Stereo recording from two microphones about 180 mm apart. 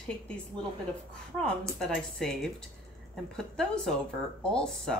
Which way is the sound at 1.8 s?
Centre (ahead or behind).